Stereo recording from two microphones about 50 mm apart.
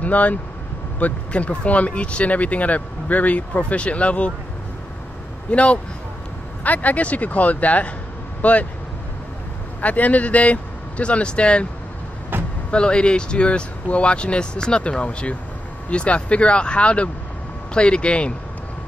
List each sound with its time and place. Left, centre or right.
0.0 s speech: left
5.5 s speech: left
9.8 s speech: left
12.7 s speech: centre